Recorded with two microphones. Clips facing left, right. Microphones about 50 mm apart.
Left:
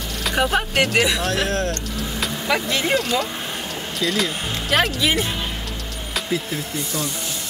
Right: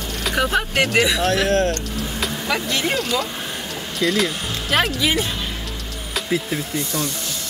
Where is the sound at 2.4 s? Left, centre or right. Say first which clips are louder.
Left 2 dB; left.